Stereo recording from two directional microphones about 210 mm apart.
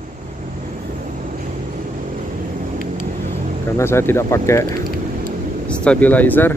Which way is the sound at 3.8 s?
10° left (ahead or behind).